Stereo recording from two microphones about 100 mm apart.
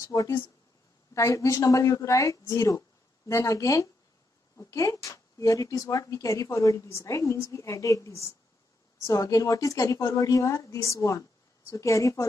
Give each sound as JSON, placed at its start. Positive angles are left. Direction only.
{"t": 0.0, "sound": "speech", "side_deg": 35}